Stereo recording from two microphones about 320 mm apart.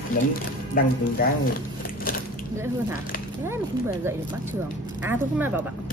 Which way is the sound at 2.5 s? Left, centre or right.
Centre.